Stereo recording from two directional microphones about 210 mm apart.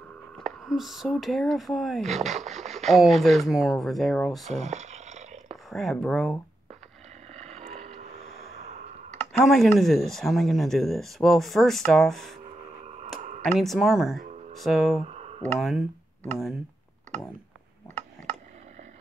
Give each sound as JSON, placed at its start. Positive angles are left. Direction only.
{"t": 0.4, "sound": "speech", "side_deg": 0}
{"t": 2.0, "sound": "speech", "side_deg": -30}
{"t": 2.8, "sound": "speech", "side_deg": 0}
{"t": 4.6, "sound": "a sound", "side_deg": -35}
{"t": 5.7, "sound": "speech", "side_deg": 0}
{"t": 7.3, "sound": "vehicle", "side_deg": -30}
{"t": 9.2, "sound": "speech", "side_deg": 0}
{"t": 12.8, "sound": "clicking", "side_deg": -30}
{"t": 13.4, "sound": "speech", "side_deg": 5}
{"t": 15.0, "sound": "a sound", "side_deg": -30}
{"t": 15.5, "sound": "speech", "side_deg": 0}